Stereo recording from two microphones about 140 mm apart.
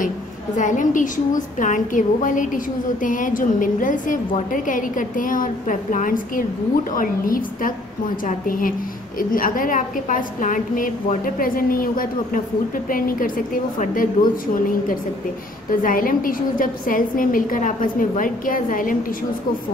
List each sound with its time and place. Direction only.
0.6 s a woman's voice: 65° left (ahead or behind); by 13.3 s 90° left
13.7 s a woman's voice: 75° left (ahead or behind)